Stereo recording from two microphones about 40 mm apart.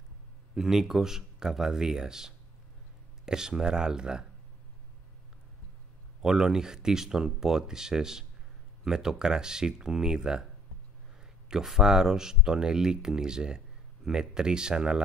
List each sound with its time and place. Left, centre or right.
0.6 s speech: centre
6.2 s speech: centre
11.4 s speech: centre